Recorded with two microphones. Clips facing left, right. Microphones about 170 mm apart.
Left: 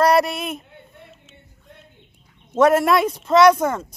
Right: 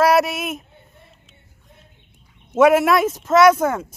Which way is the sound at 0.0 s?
5° right (ahead or behind).